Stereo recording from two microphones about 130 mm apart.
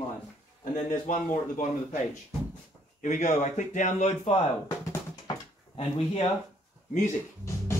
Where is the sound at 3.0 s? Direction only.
70° left (ahead or behind).